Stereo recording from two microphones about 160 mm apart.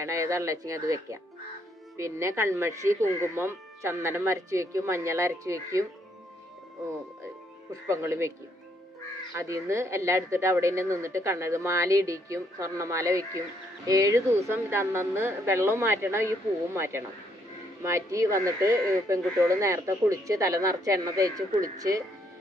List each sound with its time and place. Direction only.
0.0 s speech: 20° right (ahead or behind)
7.9 s speech: 15° right (ahead or behind)
9.3 s speech: 20° right (ahead or behind)